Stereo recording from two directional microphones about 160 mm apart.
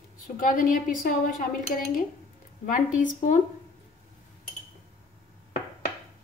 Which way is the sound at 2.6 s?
55° left (ahead or behind).